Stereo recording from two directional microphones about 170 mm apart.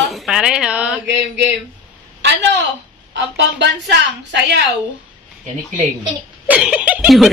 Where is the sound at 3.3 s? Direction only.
85° right.